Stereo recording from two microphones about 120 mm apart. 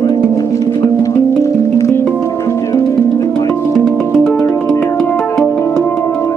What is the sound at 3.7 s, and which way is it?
Music, centre (ahead or behind).